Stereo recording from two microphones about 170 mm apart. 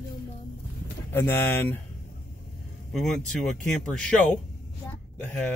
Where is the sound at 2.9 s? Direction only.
Centre (ahead or behind).